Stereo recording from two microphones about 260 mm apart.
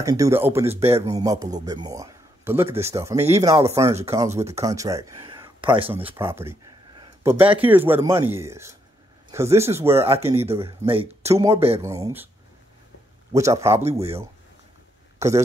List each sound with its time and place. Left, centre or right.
0.0 s a man's voice: centre
6.0 s a man's voice: centre
10.4 s a man's voice: right
11.5 s speech: right
11.8 s a man's voice: centre
13.3 s a man's voice: centre
13.8 s speech: right
15.1 s speech: centre